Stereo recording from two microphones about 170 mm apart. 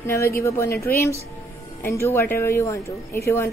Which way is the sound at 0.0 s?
15° left (ahead or behind).